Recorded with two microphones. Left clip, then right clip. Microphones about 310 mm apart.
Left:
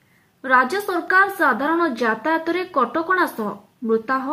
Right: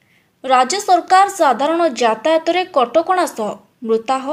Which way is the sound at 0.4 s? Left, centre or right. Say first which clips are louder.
Right 3 dB; centre.